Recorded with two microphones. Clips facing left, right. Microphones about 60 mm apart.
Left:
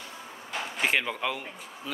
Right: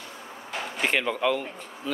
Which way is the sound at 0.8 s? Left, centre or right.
Centre.